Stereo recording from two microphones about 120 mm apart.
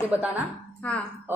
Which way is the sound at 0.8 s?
10° left (ahead or behind).